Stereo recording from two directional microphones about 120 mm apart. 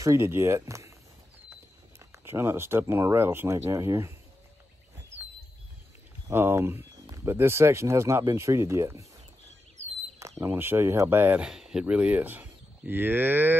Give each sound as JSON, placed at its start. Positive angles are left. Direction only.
{"t": 0.0, "sound": "speech", "side_deg": -25}
{"t": 2.1, "sound": "speech", "side_deg": -20}
{"t": 6.2, "sound": "speech", "side_deg": -20}
{"t": 10.4, "sound": "speech", "side_deg": -20}